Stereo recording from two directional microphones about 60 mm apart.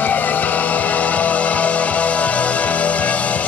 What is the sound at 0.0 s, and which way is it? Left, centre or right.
Music, left.